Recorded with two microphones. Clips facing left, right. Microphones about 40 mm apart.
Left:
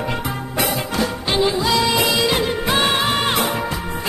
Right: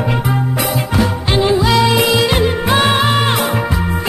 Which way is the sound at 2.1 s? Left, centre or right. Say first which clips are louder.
Right 4 dB; right.